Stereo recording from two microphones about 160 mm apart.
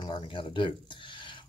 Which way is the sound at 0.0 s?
30° left (ahead or behind).